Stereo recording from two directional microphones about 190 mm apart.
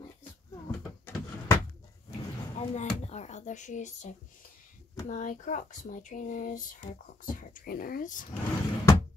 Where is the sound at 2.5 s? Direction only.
35° left (ahead or behind).